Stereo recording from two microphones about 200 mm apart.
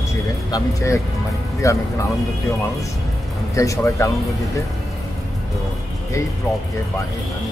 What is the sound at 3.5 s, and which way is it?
Speech, 15° left (ahead or behind).